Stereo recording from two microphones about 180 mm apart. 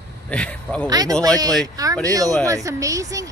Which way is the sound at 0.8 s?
20° right (ahead or behind).